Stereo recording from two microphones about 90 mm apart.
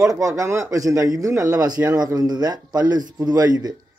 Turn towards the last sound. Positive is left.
turn(degrees=-45)  # may be behind; listen again after turning